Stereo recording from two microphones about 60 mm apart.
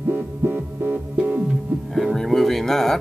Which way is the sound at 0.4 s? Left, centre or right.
Right.